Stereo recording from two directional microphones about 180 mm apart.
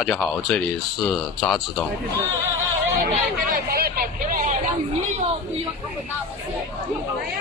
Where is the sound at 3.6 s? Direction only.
55° right (ahead or behind).